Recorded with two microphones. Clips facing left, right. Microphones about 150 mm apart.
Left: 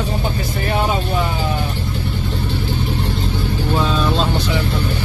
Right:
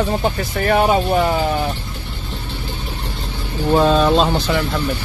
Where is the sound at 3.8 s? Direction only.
65° right (ahead or behind).